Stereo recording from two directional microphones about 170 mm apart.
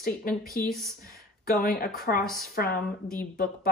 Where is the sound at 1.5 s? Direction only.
60° left (ahead or behind).